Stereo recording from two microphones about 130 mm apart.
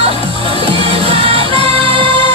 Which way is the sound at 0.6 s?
45° right (ahead or behind).